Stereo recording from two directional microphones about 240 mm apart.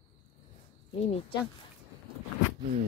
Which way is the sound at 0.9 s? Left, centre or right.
Left.